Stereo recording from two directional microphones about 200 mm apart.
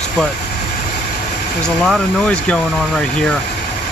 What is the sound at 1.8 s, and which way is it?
Speech, 5° left (ahead or behind).